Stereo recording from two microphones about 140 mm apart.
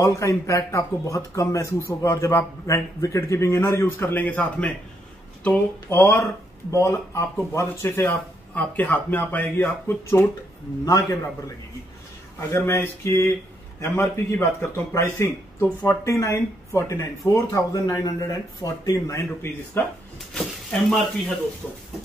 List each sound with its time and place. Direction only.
0.0 s speech: 20° left (ahead or behind)
20.3 s speech: centre (ahead or behind)